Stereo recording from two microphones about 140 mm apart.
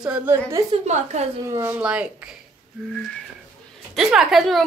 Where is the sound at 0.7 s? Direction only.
55° right (ahead or behind).